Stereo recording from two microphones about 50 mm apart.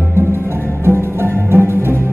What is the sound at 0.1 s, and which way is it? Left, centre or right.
Music, right.